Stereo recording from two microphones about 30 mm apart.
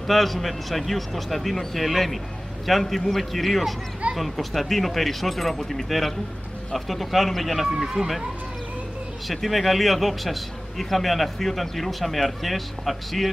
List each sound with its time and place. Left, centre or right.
0.0 s a man's voice: centre
7.7 s speech: centre
9.3 s a man's voice: centre